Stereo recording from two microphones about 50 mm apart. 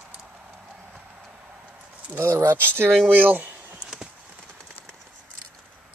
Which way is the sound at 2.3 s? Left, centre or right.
Right.